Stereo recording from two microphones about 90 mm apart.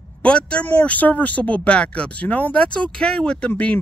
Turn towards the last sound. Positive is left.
turn(degrees=15)  # may be behind; listen again after turning